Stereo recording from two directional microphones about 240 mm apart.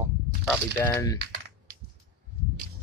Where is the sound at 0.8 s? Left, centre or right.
Centre.